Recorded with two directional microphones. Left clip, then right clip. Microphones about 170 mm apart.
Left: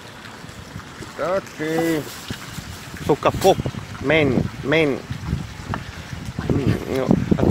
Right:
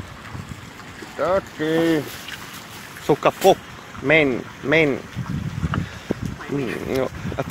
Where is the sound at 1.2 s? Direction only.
15° right (ahead or behind).